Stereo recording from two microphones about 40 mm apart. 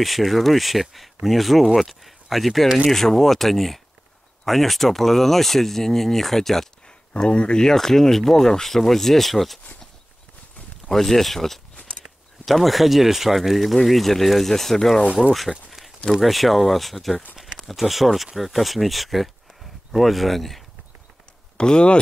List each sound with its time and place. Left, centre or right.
0.0 s speech: centre
7.2 s speech: left; by 9.6 s centre
10.9 s speech: centre
16.1 s speech: centre
21.5 s speech: left